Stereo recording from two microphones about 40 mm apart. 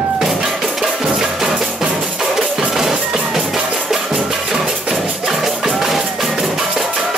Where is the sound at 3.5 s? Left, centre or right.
Right.